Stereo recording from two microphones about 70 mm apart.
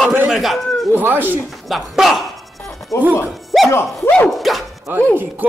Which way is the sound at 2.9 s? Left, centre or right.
Left.